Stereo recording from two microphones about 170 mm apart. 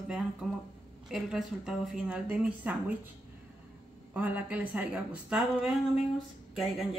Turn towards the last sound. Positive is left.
turn(degrees=0)  # may be behind; listen again after turning